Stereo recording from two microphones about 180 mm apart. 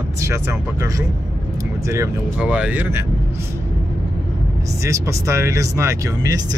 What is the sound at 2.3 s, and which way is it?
Speech, 5° right (ahead or behind).